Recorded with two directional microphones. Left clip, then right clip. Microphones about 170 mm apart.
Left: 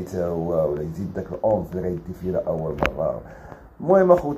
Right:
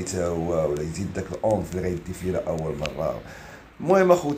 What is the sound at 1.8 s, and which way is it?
Speech, 25° right (ahead or behind).